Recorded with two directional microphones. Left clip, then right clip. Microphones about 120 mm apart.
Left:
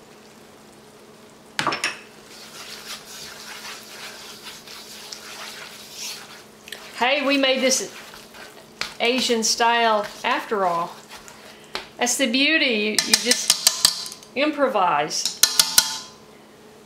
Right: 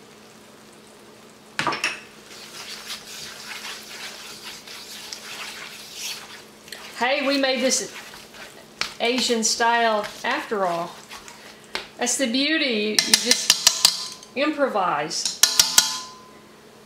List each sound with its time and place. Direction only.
1.6 s dishes: 15° left (ahead or behind)
7.0 s speech: 20° left (ahead or behind)
9.0 s speech: 20° left (ahead or behind)
12.0 s speech: 20° left (ahead or behind)
12.9 s music: centre (ahead or behind)
14.3 s dishes: 20° left (ahead or behind)